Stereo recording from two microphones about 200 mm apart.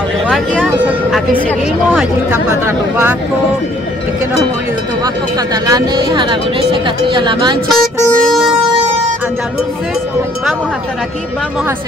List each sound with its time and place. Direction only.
0.7 s speech: 5° right (ahead or behind)
1.9 s speech: 10° left (ahead or behind)
5.0 s speech: 20° right (ahead or behind)
7.7 s vehicle horn: centre (ahead or behind)